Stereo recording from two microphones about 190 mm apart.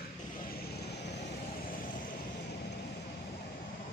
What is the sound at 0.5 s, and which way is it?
Vehicle, 60° left (ahead or behind).